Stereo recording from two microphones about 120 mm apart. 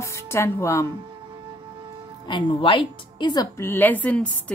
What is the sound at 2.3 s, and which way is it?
A woman's voice, 45° left (ahead or behind).